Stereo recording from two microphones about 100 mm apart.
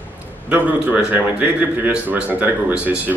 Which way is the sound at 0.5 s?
15° right (ahead or behind).